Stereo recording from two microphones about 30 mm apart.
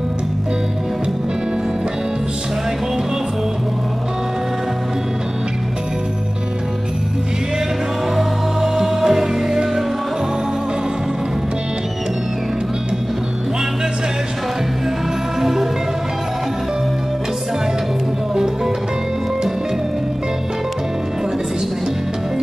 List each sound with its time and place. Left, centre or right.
8.2 s music: centre
15.4 s music: centre
18.3 s music: centre